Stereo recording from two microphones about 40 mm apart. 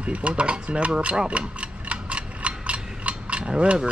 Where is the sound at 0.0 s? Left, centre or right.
Right.